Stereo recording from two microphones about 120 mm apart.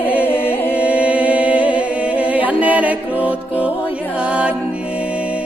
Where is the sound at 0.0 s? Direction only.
15° right (ahead or behind).